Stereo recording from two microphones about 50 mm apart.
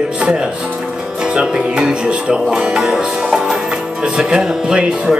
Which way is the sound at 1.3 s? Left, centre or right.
Centre.